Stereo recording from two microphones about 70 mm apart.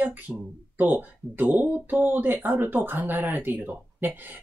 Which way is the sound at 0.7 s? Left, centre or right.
Right.